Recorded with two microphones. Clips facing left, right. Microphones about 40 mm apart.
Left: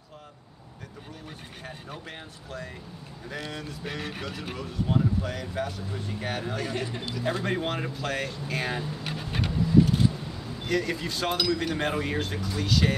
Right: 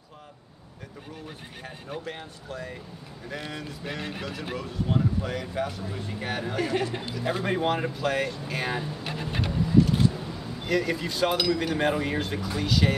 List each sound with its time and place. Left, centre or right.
1.6 s speech: centre